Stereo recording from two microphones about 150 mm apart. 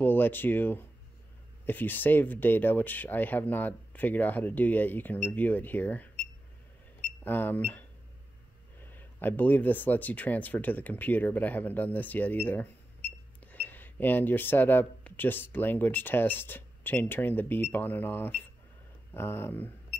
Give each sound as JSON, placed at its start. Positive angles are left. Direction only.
{"t": 0.0, "sound": "speech", "side_deg": 15}
{"t": 7.2, "sound": "speech", "side_deg": 15}
{"t": 8.8, "sound": "speech", "side_deg": 15}